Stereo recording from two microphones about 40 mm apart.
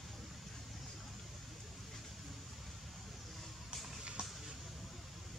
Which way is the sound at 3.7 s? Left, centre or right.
Right.